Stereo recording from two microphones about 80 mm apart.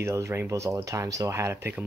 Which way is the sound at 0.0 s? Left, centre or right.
Right.